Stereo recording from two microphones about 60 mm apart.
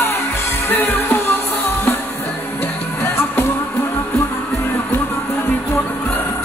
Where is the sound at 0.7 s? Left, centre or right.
Left.